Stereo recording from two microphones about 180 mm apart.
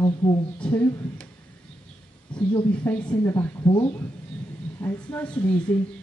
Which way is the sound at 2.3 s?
25° left (ahead or behind).